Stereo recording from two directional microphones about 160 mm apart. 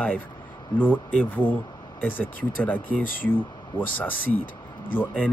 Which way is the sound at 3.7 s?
30° left (ahead or behind).